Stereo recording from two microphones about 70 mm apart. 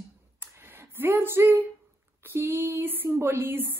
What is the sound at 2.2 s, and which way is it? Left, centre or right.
A woman's voice, right.